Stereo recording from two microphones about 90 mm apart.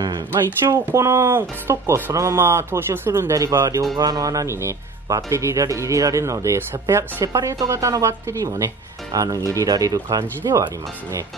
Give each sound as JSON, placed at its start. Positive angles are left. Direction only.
{"t": 0.7, "sound": "speech", "side_deg": -30}